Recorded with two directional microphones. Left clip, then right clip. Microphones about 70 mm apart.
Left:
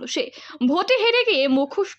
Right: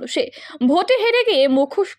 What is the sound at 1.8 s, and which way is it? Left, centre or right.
Speech, right.